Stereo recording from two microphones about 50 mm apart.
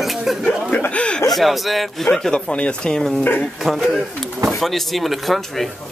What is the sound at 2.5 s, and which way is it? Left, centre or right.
Speech, left.